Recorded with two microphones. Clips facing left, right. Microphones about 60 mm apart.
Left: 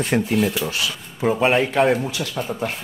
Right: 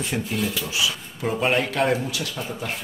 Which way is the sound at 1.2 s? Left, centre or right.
Centre.